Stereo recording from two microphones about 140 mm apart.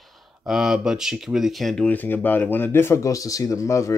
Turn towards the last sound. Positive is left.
turn(degrees=20)  # may be behind; listen again after turning